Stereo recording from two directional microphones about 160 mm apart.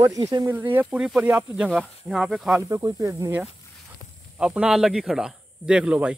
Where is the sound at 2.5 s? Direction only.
20° right (ahead or behind).